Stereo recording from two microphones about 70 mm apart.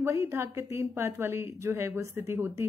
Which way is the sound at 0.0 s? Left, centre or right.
Right.